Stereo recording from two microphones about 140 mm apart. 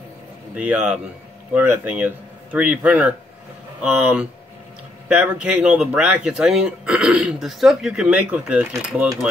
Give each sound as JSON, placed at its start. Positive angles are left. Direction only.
{"t": 0.6, "sound": "speech", "side_deg": -10}